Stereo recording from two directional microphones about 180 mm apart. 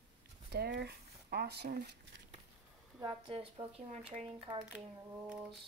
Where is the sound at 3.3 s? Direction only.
30° right (ahead or behind).